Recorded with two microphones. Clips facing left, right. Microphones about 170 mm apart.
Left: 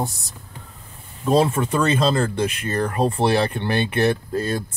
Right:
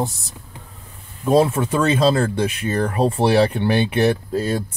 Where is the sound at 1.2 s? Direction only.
Centre (ahead or behind).